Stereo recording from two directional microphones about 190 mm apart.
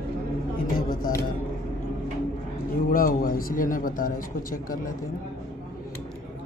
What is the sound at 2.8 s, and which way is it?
A man's voice, 50° left (ahead or behind).